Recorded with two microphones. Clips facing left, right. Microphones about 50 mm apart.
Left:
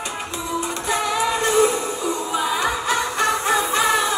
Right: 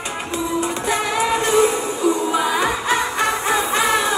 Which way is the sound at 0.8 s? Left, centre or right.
Right.